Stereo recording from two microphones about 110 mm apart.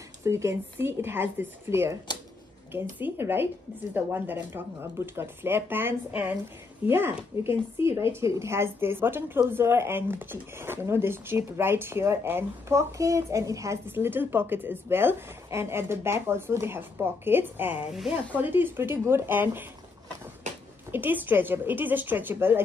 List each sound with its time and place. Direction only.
0.2 s speech: 25° right (ahead or behind)
20.9 s speech: 20° right (ahead or behind)